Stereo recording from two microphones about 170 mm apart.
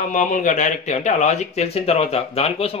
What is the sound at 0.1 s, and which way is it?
Speech, 50° left (ahead or behind).